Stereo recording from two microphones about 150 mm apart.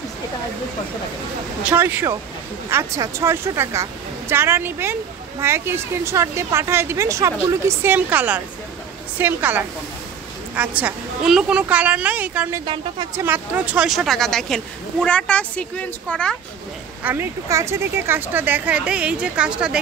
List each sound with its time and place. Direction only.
1.6 s a woman's voice: 10° right (ahead or behind)
12.6 s speech: 30° right (ahead or behind)
13.1 s a woman's voice: 15° right (ahead or behind); by 16.3 s 5° left (ahead or behind)
17.0 s a woman's voice: 15° right (ahead or behind)